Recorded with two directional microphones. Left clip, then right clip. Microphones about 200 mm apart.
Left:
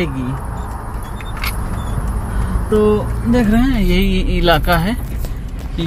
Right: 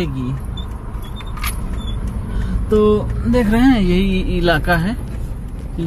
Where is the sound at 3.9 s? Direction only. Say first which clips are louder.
Left 1 dB; centre (ahead or behind).